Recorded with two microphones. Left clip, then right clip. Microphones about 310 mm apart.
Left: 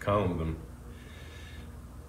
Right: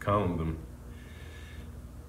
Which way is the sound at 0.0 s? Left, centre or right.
Centre.